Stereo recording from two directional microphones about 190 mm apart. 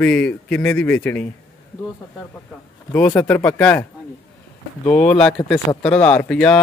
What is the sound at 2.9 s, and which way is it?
Speech, 10° left (ahead or behind).